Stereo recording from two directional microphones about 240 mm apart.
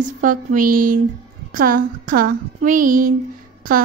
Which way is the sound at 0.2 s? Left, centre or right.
Right.